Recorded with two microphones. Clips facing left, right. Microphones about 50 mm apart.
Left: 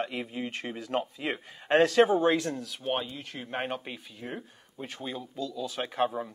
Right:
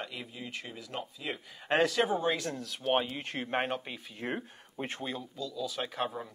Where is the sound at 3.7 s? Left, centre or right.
Centre.